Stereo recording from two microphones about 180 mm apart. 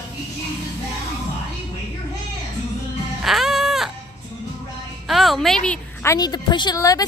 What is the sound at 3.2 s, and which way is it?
Music, centre (ahead or behind).